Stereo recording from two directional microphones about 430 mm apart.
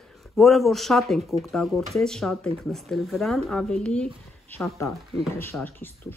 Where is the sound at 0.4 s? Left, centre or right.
Centre.